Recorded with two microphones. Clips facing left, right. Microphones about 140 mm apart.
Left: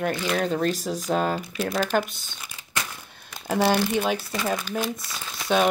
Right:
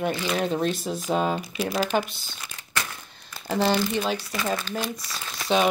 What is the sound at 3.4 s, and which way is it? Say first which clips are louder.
Speech: left 1 dB; 10° left (ahead or behind).